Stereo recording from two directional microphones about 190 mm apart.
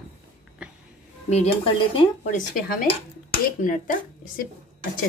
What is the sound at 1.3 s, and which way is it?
Speech, 30° left (ahead or behind).